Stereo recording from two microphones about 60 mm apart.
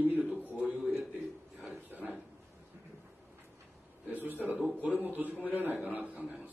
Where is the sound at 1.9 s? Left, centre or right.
Right.